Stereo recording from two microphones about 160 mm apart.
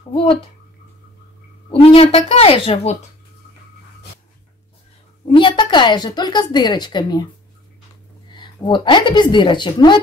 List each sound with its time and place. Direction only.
0.1 s speech: 35° left (ahead or behind)
1.7 s speech: 35° left (ahead or behind)
5.3 s a woman's voice: 30° left (ahead or behind)
8.3 s a woman's voice: 30° left (ahead or behind)